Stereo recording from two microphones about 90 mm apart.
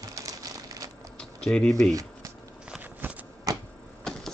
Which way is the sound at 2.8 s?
20° right (ahead or behind).